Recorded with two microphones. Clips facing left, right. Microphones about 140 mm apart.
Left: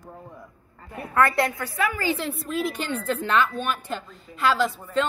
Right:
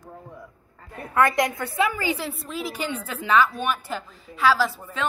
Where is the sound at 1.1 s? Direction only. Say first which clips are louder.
Right 1 dB; 15° right (ahead or behind).